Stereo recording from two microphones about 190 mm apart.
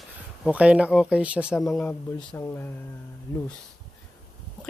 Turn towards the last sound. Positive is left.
turn(degrees=15)  # may be behind; listen again after turning